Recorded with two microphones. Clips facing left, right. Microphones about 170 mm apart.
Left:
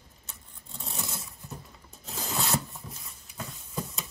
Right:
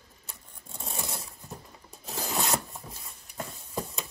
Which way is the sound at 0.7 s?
20° right (ahead or behind).